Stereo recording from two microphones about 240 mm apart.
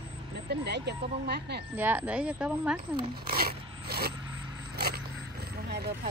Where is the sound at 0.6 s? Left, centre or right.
Right.